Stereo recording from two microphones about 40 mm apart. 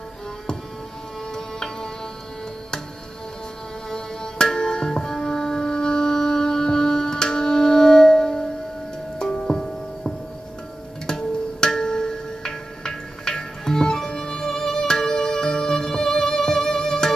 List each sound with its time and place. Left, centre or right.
1.3 s music: centre
3.9 s music: centre